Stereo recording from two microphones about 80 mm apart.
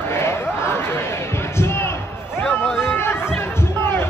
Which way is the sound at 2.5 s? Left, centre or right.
Centre.